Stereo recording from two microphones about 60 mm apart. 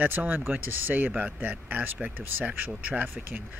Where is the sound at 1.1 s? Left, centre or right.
Right.